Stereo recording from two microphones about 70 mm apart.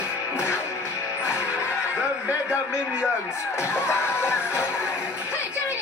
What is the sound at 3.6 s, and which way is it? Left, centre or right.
A man's voice, left.